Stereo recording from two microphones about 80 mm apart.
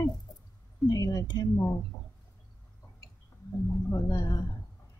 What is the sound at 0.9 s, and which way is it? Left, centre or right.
Speech, left.